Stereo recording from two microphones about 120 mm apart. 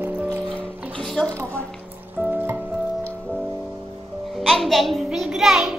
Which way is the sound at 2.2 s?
15° right (ahead or behind).